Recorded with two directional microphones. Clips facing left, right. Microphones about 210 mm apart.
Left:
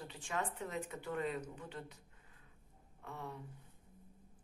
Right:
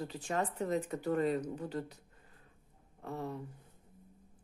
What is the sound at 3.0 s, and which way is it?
Speech, 35° right (ahead or behind).